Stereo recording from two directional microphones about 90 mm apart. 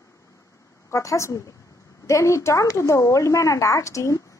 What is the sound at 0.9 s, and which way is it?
A woman's voice, 35° left (ahead or behind).